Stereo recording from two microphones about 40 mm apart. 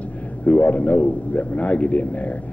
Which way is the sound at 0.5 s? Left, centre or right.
Left.